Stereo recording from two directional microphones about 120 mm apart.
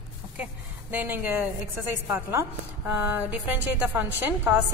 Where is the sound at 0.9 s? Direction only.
15° right (ahead or behind).